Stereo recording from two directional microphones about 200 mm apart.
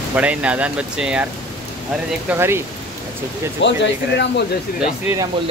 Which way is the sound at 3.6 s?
60° left (ahead or behind).